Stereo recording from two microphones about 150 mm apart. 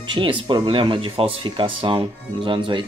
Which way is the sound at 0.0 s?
30° right (ahead or behind).